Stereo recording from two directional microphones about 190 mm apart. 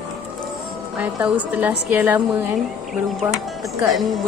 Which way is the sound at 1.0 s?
10° right (ahead or behind).